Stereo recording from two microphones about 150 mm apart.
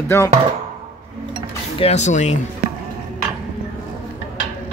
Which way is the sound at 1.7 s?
45° left (ahead or behind).